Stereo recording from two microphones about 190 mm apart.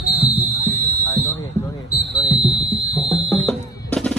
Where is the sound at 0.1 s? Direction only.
30° right (ahead or behind).